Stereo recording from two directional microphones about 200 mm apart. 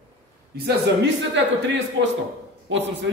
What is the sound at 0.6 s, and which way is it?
Speech, 55° right (ahead or behind).